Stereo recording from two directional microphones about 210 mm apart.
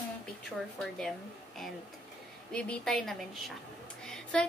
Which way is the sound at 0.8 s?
Centre (ahead or behind).